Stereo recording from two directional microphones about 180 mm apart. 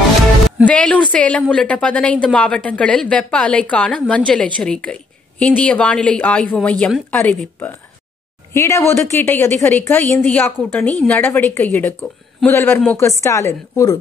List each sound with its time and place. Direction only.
0.7 s a woman's voice: 5° left (ahead or behind)